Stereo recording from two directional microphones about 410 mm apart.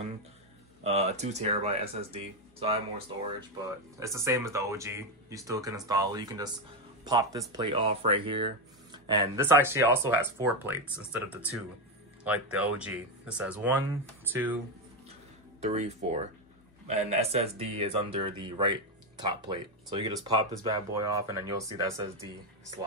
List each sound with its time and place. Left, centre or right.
0.8 s speech: centre
15.6 s speech: centre